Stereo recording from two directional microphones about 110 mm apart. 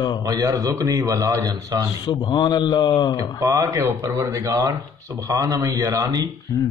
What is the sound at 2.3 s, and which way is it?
Mantra, 40° left (ahead or behind).